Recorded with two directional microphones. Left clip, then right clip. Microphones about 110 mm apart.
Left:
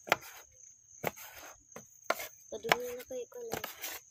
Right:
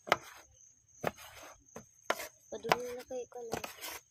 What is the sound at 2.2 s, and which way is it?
Chopping, 5° left (ahead or behind).